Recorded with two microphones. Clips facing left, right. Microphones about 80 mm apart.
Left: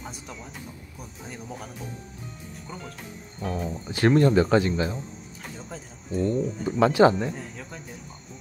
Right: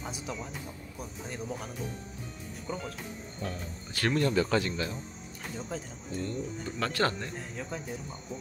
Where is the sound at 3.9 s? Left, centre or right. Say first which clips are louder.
Left 8 dB; left.